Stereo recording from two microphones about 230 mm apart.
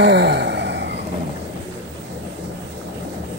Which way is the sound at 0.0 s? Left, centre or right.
Right.